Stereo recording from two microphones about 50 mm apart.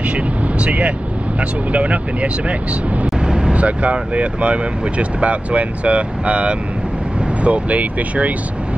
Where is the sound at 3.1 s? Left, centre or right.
Centre.